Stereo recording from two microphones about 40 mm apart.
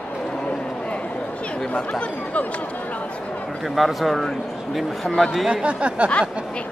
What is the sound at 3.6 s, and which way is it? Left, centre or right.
Speech, centre.